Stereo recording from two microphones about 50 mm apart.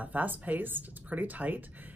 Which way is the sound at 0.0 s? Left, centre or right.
Right.